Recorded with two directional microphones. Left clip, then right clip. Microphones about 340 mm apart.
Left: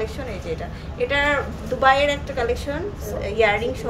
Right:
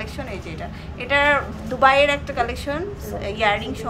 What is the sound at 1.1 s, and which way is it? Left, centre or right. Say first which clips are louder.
A woman's voice: right 3 dB; centre.